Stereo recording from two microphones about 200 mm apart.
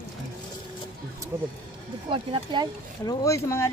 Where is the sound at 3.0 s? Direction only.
20° left (ahead or behind).